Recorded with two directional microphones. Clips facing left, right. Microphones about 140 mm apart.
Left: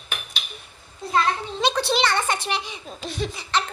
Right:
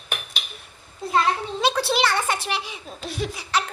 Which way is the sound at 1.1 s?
5° right (ahead or behind).